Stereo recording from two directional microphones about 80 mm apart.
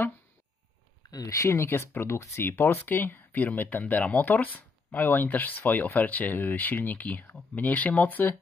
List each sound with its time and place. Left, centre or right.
1.1 s speech: left